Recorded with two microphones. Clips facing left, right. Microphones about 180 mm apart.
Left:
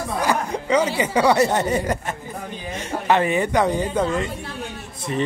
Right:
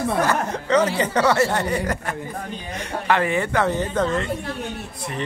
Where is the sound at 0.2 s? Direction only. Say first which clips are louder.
Even; 10° left (ahead or behind).